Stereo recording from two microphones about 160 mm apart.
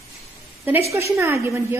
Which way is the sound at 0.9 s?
15° right (ahead or behind).